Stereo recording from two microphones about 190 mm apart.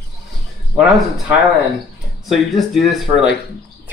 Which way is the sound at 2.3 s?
Centre (ahead or behind).